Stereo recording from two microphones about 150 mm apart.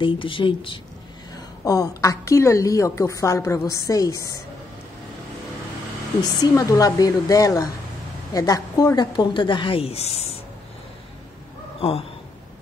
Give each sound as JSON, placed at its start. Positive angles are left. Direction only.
{"t": 0.0, "sound": "speech", "side_deg": 35}
{"t": 1.3, "sound": "a woman's voice", "side_deg": 25}
{"t": 6.2, "sound": "a woman's voice", "side_deg": 25}
{"t": 11.8, "sound": "speech", "side_deg": 40}